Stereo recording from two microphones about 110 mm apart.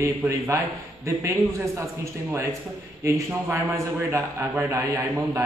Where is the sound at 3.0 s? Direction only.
25° right (ahead or behind).